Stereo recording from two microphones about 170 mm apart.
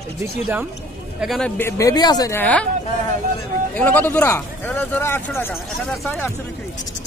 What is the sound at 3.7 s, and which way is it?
Speech, 10° left (ahead or behind).